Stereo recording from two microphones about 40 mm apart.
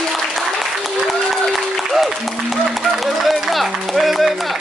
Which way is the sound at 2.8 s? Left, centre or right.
Centre.